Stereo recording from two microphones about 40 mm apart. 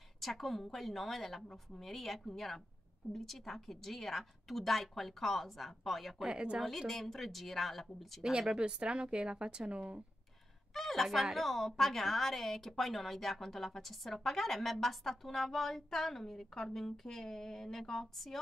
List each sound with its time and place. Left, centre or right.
0.2 s a woman's voice: centre
6.2 s a woman's voice: right
6.9 s a woman's voice: centre
8.2 s a woman's voice: centre
8.5 s a woman's voice: right
10.7 s a sound: centre
11.3 s a woman's voice: centre